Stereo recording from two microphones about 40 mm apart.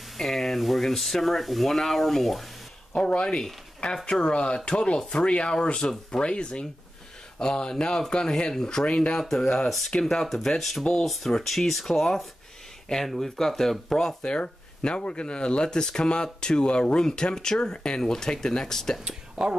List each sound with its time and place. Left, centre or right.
0.2 s speech: centre
2.9 s speech: left
9.3 s speech: centre
11.5 s speech: centre
14.2 s speech: left
19.4 s speech: centre